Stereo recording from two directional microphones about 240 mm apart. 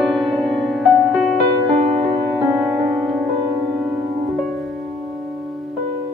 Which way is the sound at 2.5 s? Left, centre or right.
Centre.